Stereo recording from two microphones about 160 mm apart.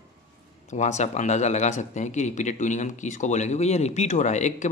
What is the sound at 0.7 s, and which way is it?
A man's voice, 45° left (ahead or behind).